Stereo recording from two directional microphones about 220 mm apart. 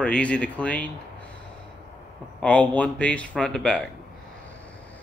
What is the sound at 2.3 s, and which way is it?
Speech, 5° left (ahead or behind).